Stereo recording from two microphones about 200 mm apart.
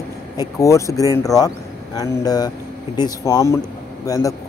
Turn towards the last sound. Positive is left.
turn(degrees=15)  # may be behind; listen again after turning